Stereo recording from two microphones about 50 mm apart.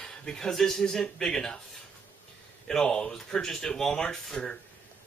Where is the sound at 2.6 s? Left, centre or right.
Centre.